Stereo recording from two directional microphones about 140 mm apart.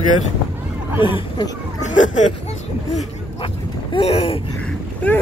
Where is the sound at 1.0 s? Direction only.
35° left (ahead or behind).